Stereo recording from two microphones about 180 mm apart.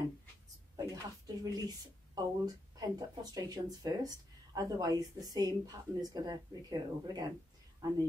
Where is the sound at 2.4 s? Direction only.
20° right (ahead or behind).